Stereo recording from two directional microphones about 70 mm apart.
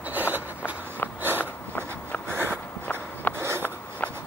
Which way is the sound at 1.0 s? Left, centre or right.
Left.